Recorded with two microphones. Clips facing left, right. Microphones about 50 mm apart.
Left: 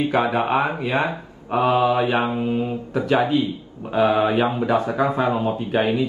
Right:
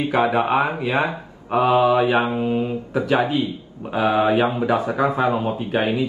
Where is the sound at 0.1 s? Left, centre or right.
Centre.